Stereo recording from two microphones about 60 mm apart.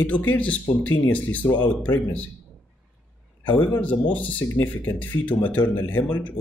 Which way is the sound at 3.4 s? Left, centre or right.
Left.